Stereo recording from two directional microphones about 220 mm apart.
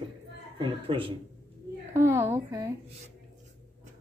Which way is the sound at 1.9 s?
10° right (ahead or behind).